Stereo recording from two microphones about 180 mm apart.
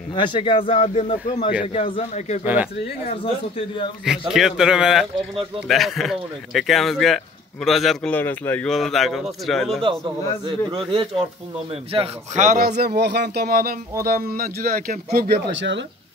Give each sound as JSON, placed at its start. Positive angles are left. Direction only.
{"t": 0.1, "sound": "a man's voice", "side_deg": 25}
{"t": 2.4, "sound": "speech", "side_deg": -10}
{"t": 3.1, "sound": "a man's voice", "side_deg": 30}
{"t": 4.3, "sound": "a man's voice", "side_deg": -5}
{"t": 9.8, "sound": "a man's voice", "side_deg": -25}
{"t": 12.4, "sound": "speech", "side_deg": -50}